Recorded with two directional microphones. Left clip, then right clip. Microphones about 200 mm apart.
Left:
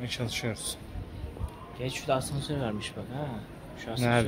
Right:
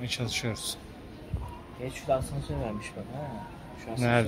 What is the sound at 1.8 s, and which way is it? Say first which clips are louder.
Speech: even; 45° left (ahead or behind).